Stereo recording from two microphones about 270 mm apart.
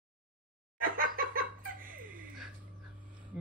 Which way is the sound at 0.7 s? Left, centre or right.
Right.